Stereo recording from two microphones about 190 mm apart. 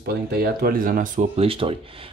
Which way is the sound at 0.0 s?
55° right (ahead or behind).